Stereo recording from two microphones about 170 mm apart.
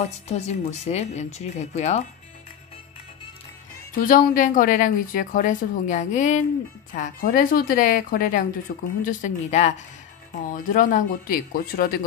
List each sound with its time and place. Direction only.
0.3 s speech: 40° left (ahead or behind)
4.0 s a woman's voice: 50° left (ahead or behind)
9.0 s a woman's voice: 45° left (ahead or behind)